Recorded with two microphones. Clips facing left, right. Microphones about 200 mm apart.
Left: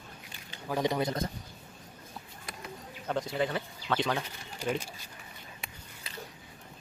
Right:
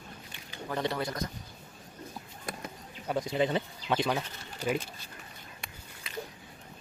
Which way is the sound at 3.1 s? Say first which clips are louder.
Right 2 dB; 10° right (ahead or behind).